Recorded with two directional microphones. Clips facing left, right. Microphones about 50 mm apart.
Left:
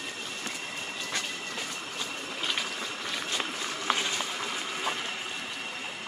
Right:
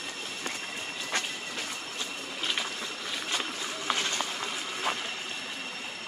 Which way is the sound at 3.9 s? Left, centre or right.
Centre.